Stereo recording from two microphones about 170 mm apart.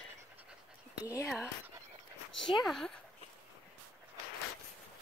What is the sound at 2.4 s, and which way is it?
Speech, centre (ahead or behind).